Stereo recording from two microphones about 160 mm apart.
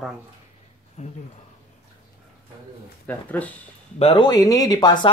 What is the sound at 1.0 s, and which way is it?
Speech, 50° left (ahead or behind).